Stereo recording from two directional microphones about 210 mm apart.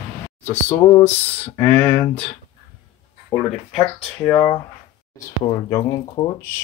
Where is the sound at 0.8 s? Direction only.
25° left (ahead or behind).